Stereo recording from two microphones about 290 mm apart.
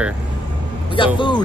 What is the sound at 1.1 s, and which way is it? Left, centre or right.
Speech, centre.